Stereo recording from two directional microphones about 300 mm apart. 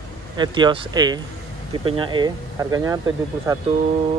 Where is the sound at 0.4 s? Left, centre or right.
Centre.